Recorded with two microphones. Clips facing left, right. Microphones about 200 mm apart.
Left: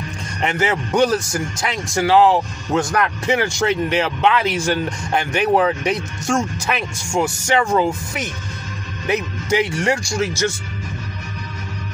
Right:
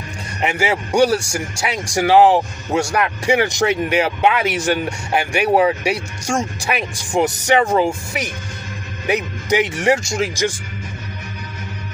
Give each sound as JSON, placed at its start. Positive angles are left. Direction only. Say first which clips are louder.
{"t": 0.4, "sound": "speech", "louder": "right 1 dB", "side_deg": -10}